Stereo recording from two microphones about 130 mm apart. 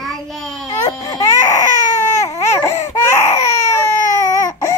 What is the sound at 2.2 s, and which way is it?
Baby cry, 20° left (ahead or behind).